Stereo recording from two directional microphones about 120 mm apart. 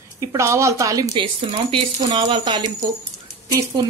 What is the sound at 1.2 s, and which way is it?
Speech, 45° right (ahead or behind).